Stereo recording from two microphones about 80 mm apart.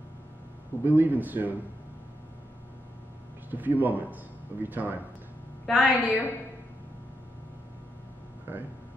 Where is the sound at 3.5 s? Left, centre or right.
Right.